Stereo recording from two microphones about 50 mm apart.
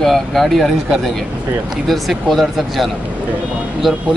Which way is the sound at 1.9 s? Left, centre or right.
Centre.